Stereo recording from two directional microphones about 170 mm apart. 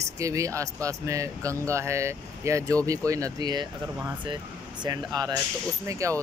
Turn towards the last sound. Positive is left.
turn(degrees=-20)  # may be behind; listen again after turning